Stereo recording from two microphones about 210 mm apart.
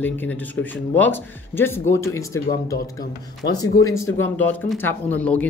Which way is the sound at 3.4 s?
55° left (ahead or behind).